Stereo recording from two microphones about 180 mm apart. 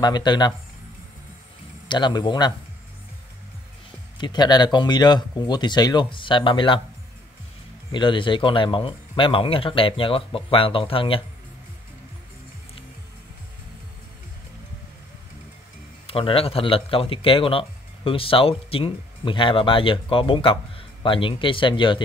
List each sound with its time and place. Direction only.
0.0 s speech: 25° left (ahead or behind)
1.9 s speech: 25° left (ahead or behind)
4.2 s speech: 25° left (ahead or behind)
7.9 s speech: 25° left (ahead or behind)
16.1 s speech: 30° left (ahead or behind)